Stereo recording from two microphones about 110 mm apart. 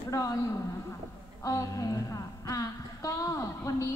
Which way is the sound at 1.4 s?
30° left (ahead or behind).